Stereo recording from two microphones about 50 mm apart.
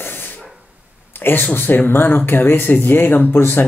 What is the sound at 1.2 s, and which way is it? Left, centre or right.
Speech, left.